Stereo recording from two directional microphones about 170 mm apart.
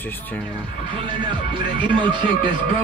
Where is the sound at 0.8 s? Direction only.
30° right (ahead or behind).